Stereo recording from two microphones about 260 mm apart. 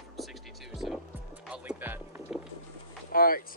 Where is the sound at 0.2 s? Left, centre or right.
Centre.